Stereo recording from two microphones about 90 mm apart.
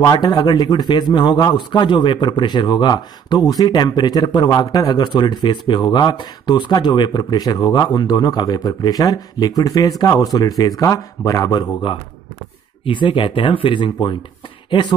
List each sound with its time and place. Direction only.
0.0 s a man's voice: 50° left (ahead or behind)
12.8 s speech: 65° left (ahead or behind)
14.7 s speech: 60° left (ahead or behind)